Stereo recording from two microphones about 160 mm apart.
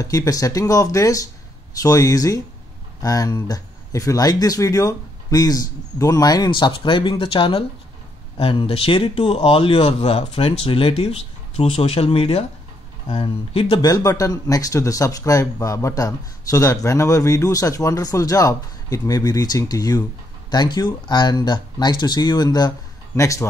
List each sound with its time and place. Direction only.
0.0 s speech: 20° left (ahead or behind)
13.7 s speech: 25° left (ahead or behind)